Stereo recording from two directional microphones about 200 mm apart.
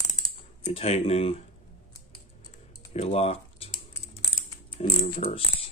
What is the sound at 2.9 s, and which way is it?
Typing, 30° left (ahead or behind).